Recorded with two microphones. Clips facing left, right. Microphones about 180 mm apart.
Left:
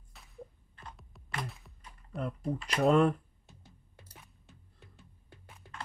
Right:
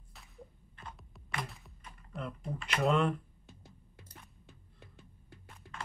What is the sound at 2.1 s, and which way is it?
Speech, 40° left (ahead or behind).